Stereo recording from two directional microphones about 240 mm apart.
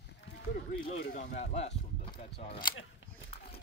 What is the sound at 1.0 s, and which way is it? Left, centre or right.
Speech, left.